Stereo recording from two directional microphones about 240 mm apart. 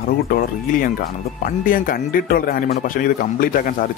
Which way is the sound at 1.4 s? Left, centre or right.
Left.